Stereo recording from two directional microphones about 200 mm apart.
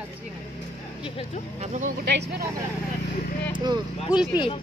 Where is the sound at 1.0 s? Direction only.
25° left (ahead or behind).